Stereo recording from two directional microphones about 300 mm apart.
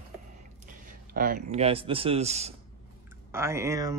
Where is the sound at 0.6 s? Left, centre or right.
Right.